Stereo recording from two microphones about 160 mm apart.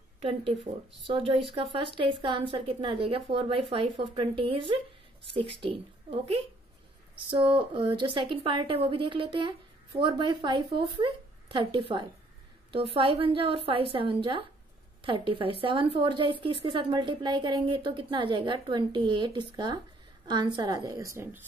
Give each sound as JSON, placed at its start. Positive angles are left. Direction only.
{"t": 1.0, "sound": "a woman's voice", "side_deg": -35}